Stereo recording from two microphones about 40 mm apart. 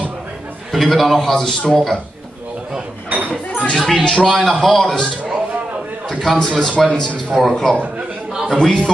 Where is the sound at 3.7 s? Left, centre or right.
Centre.